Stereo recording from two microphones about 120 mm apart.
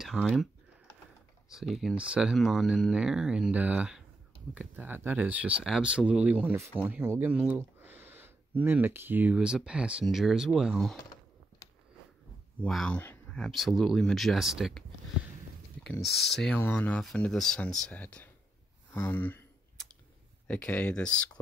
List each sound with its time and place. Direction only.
0.0 s speech: centre (ahead or behind)
1.5 s speech: 5° right (ahead or behind)
12.6 s speech: 5° left (ahead or behind)
13.4 s speech: centre (ahead or behind)
15.8 s speech: 5° left (ahead or behind)
16.5 s speech: 15° left (ahead or behind)
20.4 s speech: 10° left (ahead or behind)